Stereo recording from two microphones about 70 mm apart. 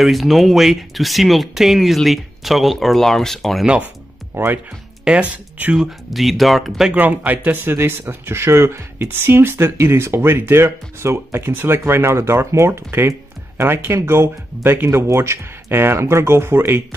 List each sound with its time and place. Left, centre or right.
0.0 s speech: centre
3.6 s speech: centre
4.4 s speech: right
5.0 s speech: centre
5.8 s speech: centre
6.9 s speech: right